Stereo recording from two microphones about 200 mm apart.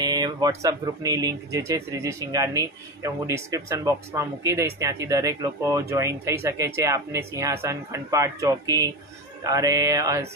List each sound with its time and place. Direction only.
0.0 s speech: 20° right (ahead or behind)